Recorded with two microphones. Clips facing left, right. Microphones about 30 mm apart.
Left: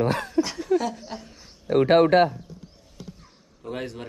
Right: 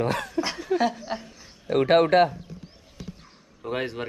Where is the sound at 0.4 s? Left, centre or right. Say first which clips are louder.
Left 1 dB; right.